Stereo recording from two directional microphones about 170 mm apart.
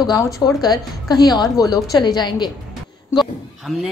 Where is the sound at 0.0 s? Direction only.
25° left (ahead or behind).